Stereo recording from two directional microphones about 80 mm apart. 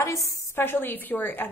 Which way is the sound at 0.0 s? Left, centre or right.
Left.